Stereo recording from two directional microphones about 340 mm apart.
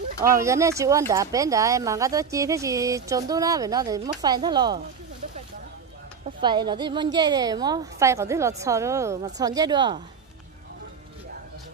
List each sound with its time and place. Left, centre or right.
0.2 s speech: centre
6.4 s speech: centre